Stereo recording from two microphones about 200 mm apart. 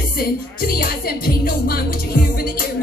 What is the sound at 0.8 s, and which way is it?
Music, 50° left (ahead or behind).